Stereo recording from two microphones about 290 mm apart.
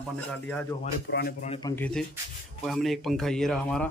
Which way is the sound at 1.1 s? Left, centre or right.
Left.